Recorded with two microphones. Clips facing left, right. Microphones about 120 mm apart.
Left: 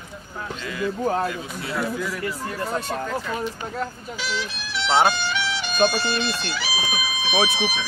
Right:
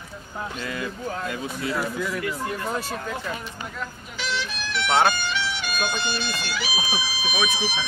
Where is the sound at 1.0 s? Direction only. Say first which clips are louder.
Left 11 dB; 40° left (ahead or behind).